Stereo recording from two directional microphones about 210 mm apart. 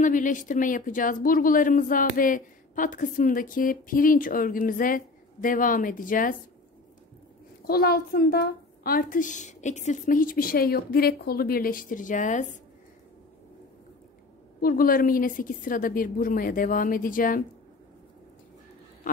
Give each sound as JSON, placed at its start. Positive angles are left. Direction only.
{"t": 0.0, "sound": "speech", "side_deg": 35}
{"t": 7.6, "sound": "a woman's voice", "side_deg": 45}
{"t": 14.6, "sound": "speech", "side_deg": 45}